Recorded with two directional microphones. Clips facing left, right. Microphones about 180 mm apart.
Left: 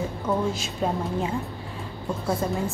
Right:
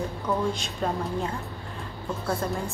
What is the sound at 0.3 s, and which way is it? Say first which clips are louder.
Speech: left 2 dB; 25° left (ahead or behind).